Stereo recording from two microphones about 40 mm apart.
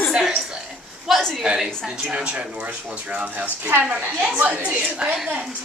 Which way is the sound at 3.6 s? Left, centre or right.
Right.